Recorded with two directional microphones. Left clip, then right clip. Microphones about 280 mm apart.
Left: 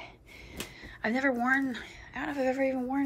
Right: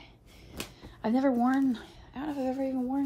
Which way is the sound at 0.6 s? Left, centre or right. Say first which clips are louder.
Right 1 dB; centre.